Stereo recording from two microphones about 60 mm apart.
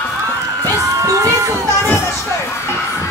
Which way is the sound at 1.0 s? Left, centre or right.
Right.